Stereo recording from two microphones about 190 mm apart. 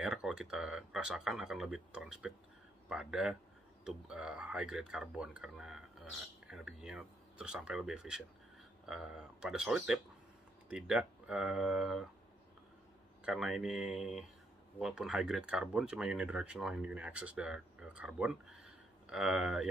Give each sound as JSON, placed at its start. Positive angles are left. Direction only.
{"t": 0.0, "sound": "speech", "side_deg": -5}
{"t": 13.2, "sound": "speech", "side_deg": -5}